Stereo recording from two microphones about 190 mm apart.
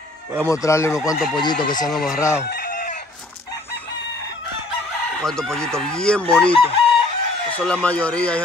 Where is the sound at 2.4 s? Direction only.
55° left (ahead or behind).